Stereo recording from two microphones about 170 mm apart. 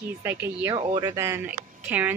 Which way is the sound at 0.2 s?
15° right (ahead or behind).